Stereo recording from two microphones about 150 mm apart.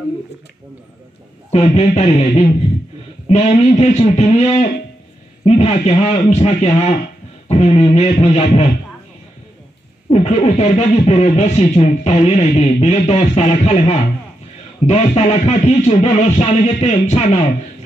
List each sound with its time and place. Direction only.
1.5 s speech: 45° left (ahead or behind)
10.0 s speech: 45° left (ahead or behind)